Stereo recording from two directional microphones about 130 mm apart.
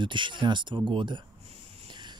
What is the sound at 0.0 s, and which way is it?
Speech, 40° right (ahead or behind).